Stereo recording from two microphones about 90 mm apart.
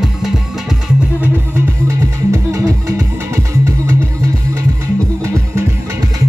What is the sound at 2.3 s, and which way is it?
Music, 35° right (ahead or behind).